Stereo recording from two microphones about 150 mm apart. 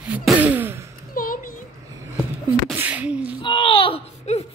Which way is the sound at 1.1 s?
70° left (ahead or behind).